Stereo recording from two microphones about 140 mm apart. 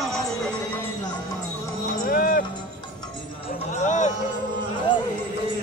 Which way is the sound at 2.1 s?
90° left.